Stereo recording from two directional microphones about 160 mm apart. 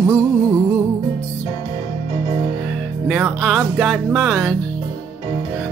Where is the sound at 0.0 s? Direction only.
20° right (ahead or behind).